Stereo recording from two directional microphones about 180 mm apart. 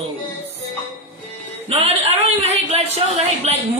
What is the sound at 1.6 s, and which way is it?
A woman's voice, 35° right (ahead or behind).